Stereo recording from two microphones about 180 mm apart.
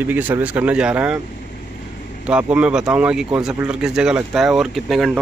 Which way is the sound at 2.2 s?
5° right (ahead or behind).